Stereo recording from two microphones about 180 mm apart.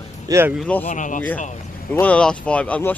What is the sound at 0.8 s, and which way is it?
Speech, 45° left (ahead or behind).